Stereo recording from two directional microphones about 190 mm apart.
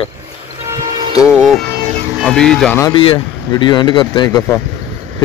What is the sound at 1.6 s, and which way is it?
Music, 55° right (ahead or behind).